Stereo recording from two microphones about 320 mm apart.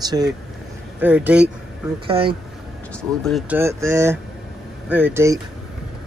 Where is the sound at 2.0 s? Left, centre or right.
Centre.